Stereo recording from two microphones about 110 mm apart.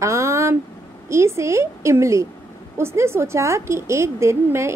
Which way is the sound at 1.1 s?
25° right (ahead or behind).